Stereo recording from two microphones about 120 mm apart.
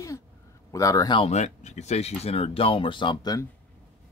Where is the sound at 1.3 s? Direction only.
75° left (ahead or behind); by 3.3 s 40° left (ahead or behind).